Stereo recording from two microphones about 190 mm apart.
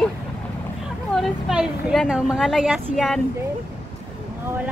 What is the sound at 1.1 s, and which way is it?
A woman's voice, centre (ahead or behind).